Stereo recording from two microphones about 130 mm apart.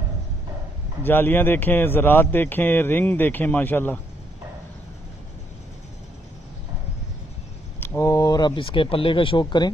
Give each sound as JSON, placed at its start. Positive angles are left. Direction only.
{"t": 1.0, "sound": "a man's voice", "side_deg": 15}
{"t": 7.8, "sound": "speech", "side_deg": 20}